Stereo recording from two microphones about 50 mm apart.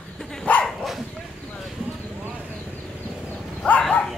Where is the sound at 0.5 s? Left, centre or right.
Left.